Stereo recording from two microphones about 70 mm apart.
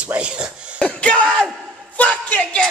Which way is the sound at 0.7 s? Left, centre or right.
Centre.